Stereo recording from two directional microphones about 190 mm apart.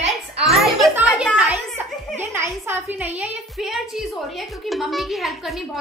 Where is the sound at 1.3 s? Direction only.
5° right (ahead or behind).